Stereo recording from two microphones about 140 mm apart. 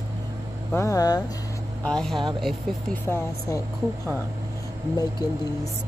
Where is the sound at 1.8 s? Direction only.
5° left (ahead or behind).